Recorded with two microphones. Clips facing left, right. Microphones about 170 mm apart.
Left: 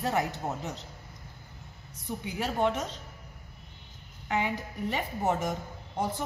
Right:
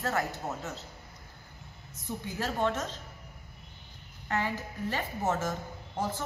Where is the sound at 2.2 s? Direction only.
15° left (ahead or behind).